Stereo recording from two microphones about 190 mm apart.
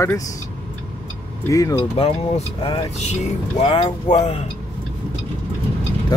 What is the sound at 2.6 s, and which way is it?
Speech, 25° left (ahead or behind).